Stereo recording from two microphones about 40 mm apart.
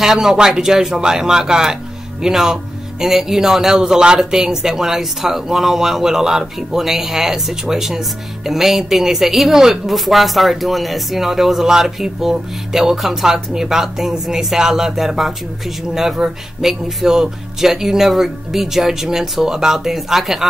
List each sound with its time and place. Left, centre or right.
0.0 s a man's voice: centre